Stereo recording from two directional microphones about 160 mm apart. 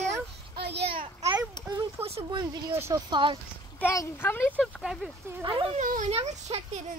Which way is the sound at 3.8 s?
15° left (ahead or behind).